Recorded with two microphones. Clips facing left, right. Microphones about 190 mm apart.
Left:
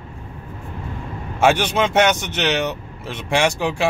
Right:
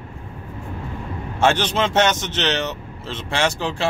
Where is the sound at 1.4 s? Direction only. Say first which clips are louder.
Left 2 dB; 10° left (ahead or behind).